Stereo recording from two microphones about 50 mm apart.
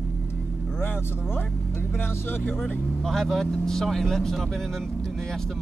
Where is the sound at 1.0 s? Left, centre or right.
Left.